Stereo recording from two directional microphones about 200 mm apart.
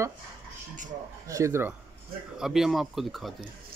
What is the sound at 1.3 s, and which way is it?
Speech, 15° right (ahead or behind).